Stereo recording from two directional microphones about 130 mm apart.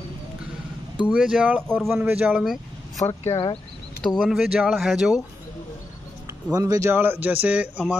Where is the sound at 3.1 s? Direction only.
25° left (ahead or behind).